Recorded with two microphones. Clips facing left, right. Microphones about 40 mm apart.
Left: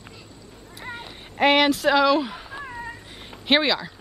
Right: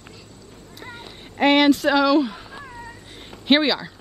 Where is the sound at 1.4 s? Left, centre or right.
Centre.